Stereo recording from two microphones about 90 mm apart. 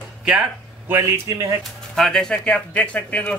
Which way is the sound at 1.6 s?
5° left (ahead or behind).